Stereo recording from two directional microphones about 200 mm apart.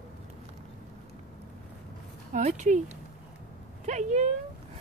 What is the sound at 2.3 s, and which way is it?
Speech, 40° right (ahead or behind).